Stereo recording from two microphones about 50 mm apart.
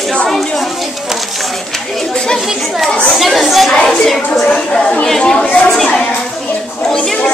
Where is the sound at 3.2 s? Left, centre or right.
Centre.